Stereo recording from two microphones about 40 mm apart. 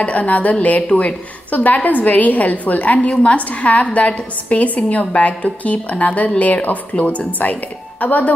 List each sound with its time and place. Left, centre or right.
0.0 s a woman's voice: left